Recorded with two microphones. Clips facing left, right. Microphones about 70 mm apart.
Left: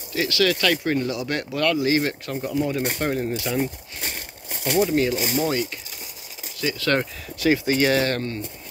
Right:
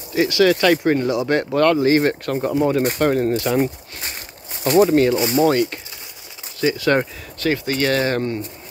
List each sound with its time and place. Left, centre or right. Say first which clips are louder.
0.1 s speech: right 6 dB; right
1.4 s speech: right 5 dB; right
2.3 s speech: right 5 dB; right
3.3 s speech: right 6 dB; right
4.7 s speech: right 7 dB; right
6.6 s speech: right 5 dB; right
7.4 s speech: even; centre